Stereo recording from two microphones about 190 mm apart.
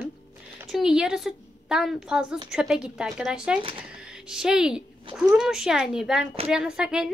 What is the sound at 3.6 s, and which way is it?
Speech, 25° right (ahead or behind).